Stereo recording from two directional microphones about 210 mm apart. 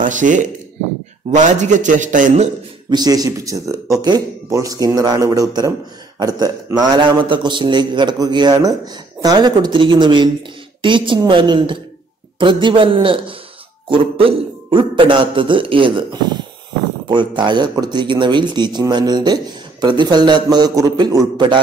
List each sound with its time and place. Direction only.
0.0 s a man's voice: 35° right (ahead or behind)
2.9 s speech: 20° right (ahead or behind)